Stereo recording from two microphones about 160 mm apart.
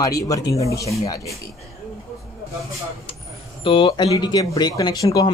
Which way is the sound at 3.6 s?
35° left (ahead or behind).